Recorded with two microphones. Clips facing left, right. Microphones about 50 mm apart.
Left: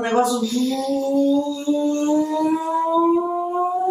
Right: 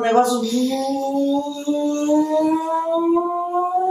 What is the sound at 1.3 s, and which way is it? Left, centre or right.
Music, centre.